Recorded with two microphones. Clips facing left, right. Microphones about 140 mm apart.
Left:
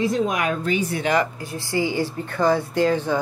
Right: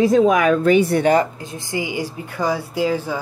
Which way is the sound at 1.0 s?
35° right (ahead or behind).